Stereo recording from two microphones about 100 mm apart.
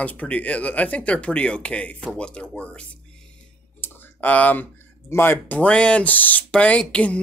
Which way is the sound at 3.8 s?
15° left (ahead or behind).